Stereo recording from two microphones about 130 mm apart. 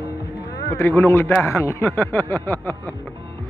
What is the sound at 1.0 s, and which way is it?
Speech, 20° left (ahead or behind).